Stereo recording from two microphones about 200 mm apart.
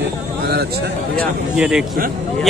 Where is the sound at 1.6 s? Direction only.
5° right (ahead or behind).